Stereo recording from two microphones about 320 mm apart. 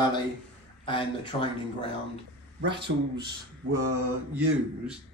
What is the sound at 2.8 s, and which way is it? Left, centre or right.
Speech, right.